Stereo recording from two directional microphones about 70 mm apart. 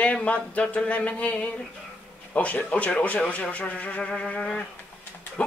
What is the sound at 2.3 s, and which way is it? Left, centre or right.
Speech, centre.